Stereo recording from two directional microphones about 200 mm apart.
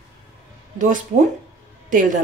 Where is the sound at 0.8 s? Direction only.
40° right (ahead or behind).